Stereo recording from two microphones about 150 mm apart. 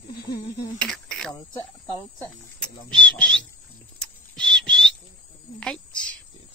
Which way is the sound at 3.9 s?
5° left (ahead or behind).